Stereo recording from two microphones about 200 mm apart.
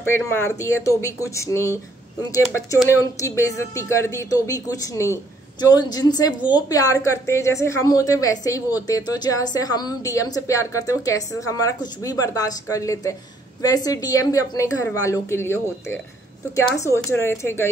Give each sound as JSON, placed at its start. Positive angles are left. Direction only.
{"t": 0.0, "sound": "a woman's voice", "side_deg": 10}
{"t": 2.9, "sound": "a woman's voice", "side_deg": 15}